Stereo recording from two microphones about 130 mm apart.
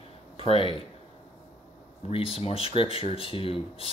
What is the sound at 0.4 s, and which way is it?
Speech, 45° left (ahead or behind).